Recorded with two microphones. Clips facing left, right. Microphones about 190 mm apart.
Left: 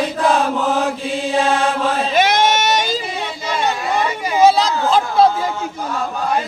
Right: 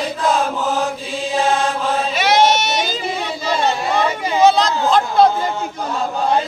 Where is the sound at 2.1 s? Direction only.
50° left (ahead or behind).